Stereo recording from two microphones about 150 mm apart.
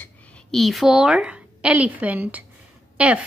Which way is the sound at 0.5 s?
Centre (ahead or behind).